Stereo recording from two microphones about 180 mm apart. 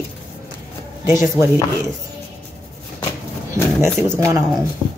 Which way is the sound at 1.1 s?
15° right (ahead or behind).